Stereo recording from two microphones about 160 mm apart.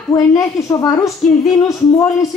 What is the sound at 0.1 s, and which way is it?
A woman's voice, 20° left (ahead or behind).